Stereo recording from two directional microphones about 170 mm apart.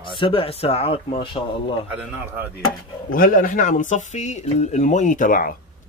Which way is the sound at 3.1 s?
55° left (ahead or behind).